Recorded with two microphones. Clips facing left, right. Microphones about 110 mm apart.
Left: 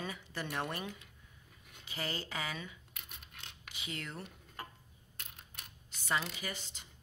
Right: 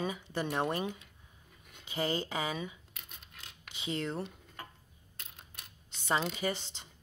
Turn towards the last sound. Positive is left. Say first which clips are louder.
# right 9 dB
turn(degrees=-25)  # may be behind; listen again after turning